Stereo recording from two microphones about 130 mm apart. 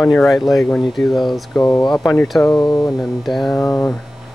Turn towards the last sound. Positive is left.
turn(degrees=25)  # may be behind; listen again after turning